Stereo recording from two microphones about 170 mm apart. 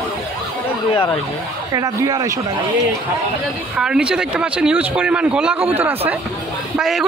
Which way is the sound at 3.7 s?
5° right (ahead or behind).